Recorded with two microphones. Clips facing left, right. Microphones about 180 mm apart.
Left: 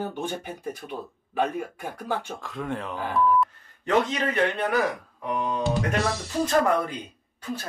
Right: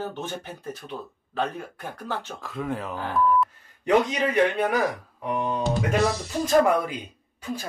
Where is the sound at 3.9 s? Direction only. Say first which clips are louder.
Right 2 dB; 10° right (ahead or behind).